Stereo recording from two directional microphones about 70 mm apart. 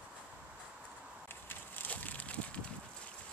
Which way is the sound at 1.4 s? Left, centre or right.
Left.